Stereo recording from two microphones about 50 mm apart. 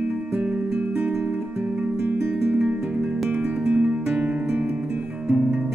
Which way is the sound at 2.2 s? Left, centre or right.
Right.